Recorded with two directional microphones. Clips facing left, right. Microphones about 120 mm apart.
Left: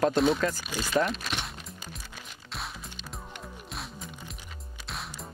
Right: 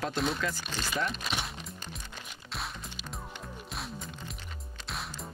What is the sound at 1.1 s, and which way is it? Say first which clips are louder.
Music: left 1 dB; centre (ahead or behind).